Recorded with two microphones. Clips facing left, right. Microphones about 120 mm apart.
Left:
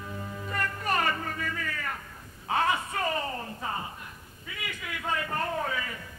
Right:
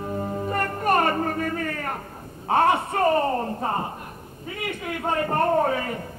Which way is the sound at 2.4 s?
50° right (ahead or behind).